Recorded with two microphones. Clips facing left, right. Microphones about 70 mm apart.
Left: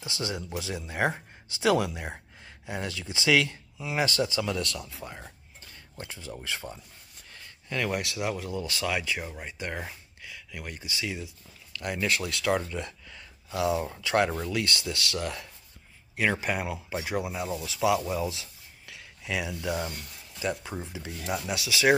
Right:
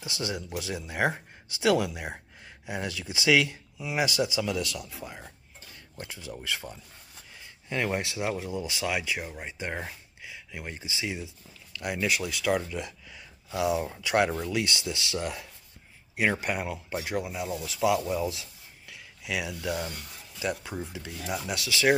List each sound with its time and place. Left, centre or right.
0.0 s speech: centre
7.7 s speech: right
11.7 s a sound: centre
12.0 s speech: centre
13.5 s speech: centre
16.3 s speech: centre
21.6 s speech: centre